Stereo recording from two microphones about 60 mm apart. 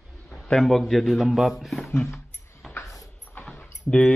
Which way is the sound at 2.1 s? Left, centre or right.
Left.